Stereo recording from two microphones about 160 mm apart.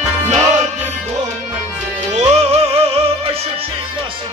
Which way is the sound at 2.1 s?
45° right (ahead or behind).